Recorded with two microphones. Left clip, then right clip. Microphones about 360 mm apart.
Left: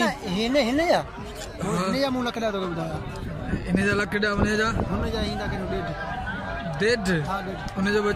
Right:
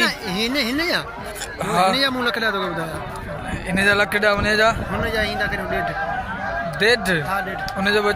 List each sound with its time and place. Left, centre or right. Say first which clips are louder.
0.0 s a sound: right 5 dB; left
1.6 s a man's voice: right 10 dB; centre
2.0 s a man's voice: right 6 dB; centre
3.7 s a man's voice: right 7 dB; centre
6.8 s a man's voice: right 6 dB; centre